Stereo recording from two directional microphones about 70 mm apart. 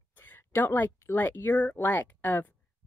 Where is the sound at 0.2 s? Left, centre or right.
Left.